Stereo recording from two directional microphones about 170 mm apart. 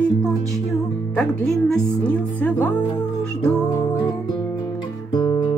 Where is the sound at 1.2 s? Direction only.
Centre (ahead or behind).